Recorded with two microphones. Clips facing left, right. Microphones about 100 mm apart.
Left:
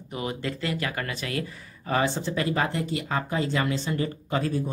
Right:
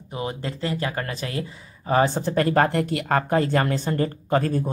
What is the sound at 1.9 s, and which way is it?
Speech, 45° right (ahead or behind).